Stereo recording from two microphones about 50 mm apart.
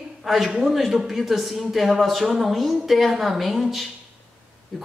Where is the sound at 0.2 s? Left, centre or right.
Centre.